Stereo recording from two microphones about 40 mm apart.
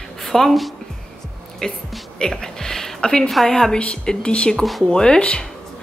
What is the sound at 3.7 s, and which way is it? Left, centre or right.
Speech, left.